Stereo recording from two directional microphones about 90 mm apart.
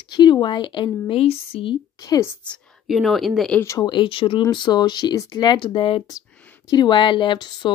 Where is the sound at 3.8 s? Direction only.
65° left (ahead or behind).